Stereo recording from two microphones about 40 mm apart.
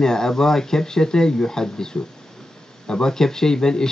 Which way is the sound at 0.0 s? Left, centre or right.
Centre.